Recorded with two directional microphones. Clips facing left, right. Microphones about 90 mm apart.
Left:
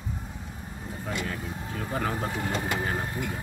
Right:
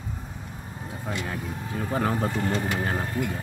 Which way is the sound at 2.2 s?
10° left (ahead or behind).